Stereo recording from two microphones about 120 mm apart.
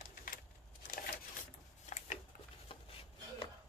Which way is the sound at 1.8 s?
70° left (ahead or behind).